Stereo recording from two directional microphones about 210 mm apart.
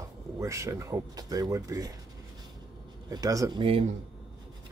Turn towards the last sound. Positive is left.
turn(degrees=-25)  # may be behind; listen again after turning